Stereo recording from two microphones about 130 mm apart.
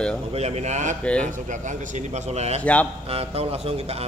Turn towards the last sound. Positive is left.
turn(degrees=-50)  # may be behind; listen again after turning